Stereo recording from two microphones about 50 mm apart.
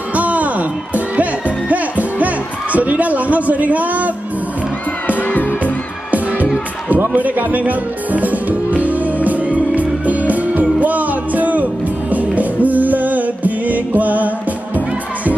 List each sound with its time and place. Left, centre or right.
0.1 s music: right
5.0 s music: left
7.2 s music: right